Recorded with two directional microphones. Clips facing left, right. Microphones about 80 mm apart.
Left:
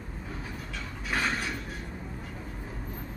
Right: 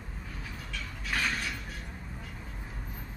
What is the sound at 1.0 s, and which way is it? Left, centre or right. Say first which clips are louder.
Mechanisms: left 2 dB; left.